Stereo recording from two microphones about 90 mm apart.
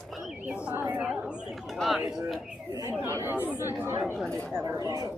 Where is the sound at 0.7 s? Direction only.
20° right (ahead or behind).